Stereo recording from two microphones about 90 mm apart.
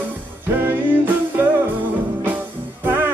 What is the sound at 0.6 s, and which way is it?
Music, 20° right (ahead or behind).